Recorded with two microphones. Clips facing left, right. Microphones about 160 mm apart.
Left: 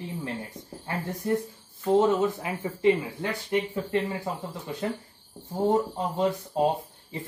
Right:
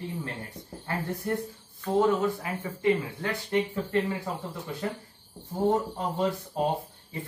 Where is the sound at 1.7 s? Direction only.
20° left (ahead or behind).